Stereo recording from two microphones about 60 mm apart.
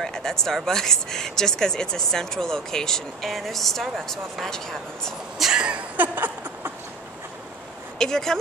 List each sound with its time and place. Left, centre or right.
0.0 s speech: centre
5.4 s speech: centre
5.9 s a sound: right
8.0 s speech: centre